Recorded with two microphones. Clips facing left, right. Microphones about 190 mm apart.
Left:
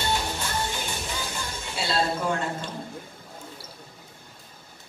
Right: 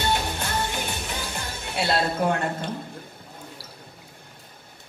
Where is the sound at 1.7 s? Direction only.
60° right (ahead or behind).